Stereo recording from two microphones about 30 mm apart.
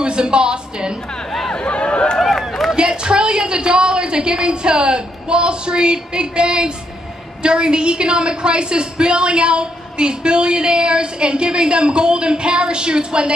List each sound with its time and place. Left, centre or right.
0.0 s a woman's voice: right
1.5 s a sound: left
2.1 s run: centre
3.0 s a woman's voice: right